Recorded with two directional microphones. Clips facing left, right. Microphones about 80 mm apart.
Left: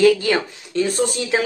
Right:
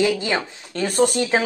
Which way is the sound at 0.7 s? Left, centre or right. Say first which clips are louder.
Left 3 dB; right.